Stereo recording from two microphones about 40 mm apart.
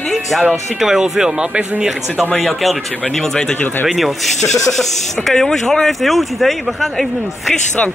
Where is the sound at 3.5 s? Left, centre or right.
Left.